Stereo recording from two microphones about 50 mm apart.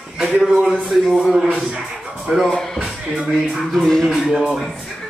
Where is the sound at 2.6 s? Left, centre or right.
Centre.